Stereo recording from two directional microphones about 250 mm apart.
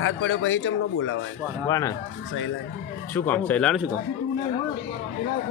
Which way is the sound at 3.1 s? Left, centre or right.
Centre.